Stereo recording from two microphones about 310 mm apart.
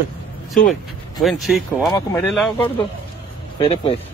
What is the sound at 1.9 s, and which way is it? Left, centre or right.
Speech, centre.